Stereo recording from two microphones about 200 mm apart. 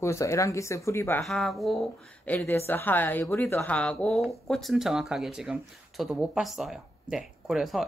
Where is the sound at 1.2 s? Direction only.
Centre (ahead or behind).